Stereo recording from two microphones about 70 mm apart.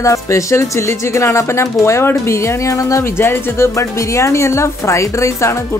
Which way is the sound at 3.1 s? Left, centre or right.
Left.